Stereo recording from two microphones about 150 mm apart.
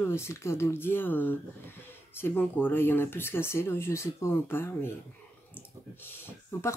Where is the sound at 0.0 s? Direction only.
15° left (ahead or behind).